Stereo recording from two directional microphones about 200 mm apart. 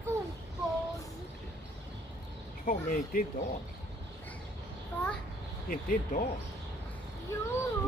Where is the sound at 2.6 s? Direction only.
45° left (ahead or behind).